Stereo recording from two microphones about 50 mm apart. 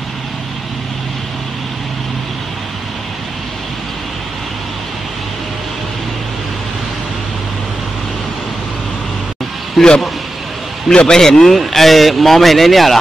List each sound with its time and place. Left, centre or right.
9.8 s a man's voice: centre